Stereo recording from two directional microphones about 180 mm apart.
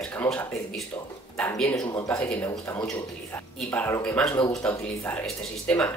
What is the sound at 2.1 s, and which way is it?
Speech, 10° left (ahead or behind).